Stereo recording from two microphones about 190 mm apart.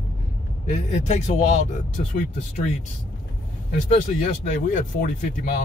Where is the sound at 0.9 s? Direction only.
35° left (ahead or behind).